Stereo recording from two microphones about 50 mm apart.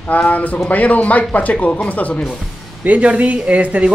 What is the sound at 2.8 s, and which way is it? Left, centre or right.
Speech, right.